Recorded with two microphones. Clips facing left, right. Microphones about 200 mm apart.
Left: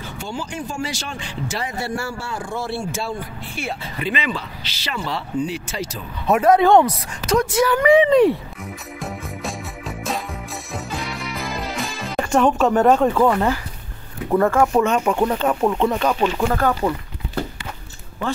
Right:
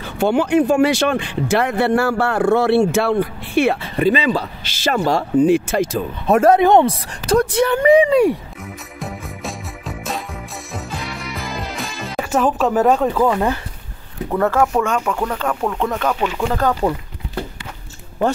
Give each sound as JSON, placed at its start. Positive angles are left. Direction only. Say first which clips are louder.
{"t": 0.0, "sound": "speech", "louder": "right 12 dB", "side_deg": -60}
{"t": 4.0, "sound": "speech", "louder": "right 9 dB", "side_deg": -35}
{"t": 6.5, "sound": "speech", "louder": "right 1 dB", "side_deg": -20}
{"t": 8.0, "sound": "speech", "louder": "even", "side_deg": -10}
{"t": 9.0, "sound": "music", "louder": "right 1 dB", "side_deg": 0}
{"t": 13.3, "sound": "speech", "louder": "right 1 dB", "side_deg": -15}
{"t": 14.6, "sound": "speech", "louder": "left 1 dB", "side_deg": 10}
{"t": 15.1, "sound": "speech", "louder": "left 3 dB", "side_deg": 20}
{"t": 16.5, "sound": "speech", "louder": "right 2 dB", "side_deg": -20}